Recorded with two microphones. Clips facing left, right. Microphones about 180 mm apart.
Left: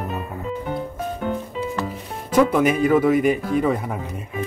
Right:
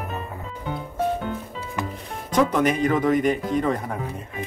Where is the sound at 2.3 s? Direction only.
5° left (ahead or behind).